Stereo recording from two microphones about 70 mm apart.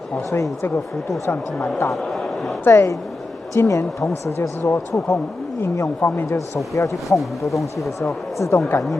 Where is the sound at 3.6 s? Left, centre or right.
Left.